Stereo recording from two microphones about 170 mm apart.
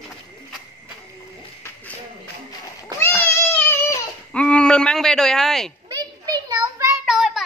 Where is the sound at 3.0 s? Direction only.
10° left (ahead or behind).